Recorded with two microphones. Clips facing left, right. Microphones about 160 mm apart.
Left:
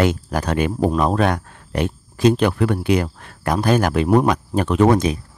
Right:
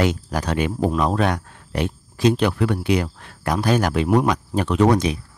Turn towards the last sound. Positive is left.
turn(degrees=50)  # may be behind; listen again after turning